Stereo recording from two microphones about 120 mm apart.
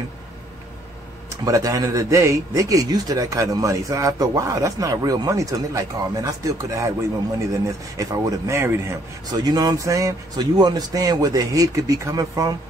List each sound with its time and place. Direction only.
1.4 s speech: 30° right (ahead or behind)
9.3 s a man's voice: 35° right (ahead or behind)